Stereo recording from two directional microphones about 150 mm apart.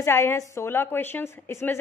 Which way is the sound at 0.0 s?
15° left (ahead or behind).